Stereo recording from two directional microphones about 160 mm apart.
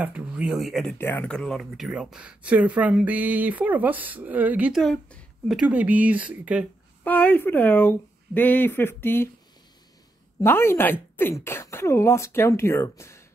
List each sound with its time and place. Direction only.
0.0 s speech: 10° right (ahead or behind)
0.9 s speech: 10° left (ahead or behind); by 6.7 s 10° right (ahead or behind)
7.1 s speech: 10° left (ahead or behind)
10.4 s speech: 15° left (ahead or behind)